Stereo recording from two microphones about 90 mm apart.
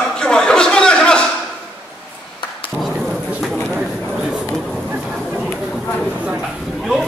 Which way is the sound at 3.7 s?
5° right (ahead or behind).